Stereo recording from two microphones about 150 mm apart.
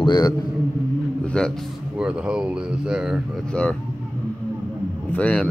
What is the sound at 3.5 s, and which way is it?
Speech, 10° left (ahead or behind).